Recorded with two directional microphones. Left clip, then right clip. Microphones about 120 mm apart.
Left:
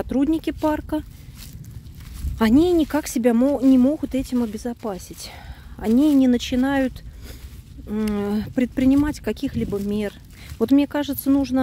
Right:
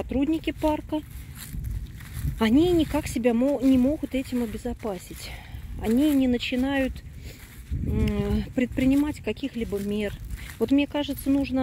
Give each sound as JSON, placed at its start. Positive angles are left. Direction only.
{"t": 0.0, "sound": "speech", "side_deg": 55}
{"t": 2.3, "sound": "speech", "side_deg": 40}
{"t": 4.6, "sound": "speech", "side_deg": 30}
{"t": 5.9, "sound": "speech", "side_deg": 55}
{"t": 7.9, "sound": "speech", "side_deg": 45}
{"t": 8.9, "sound": "speech", "side_deg": 45}
{"t": 10.6, "sound": "speech", "side_deg": 60}